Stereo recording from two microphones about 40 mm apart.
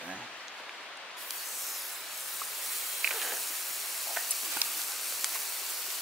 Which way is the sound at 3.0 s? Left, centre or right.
Centre.